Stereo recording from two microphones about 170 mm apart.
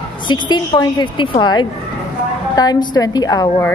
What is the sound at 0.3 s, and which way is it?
A woman's voice, 25° left (ahead or behind).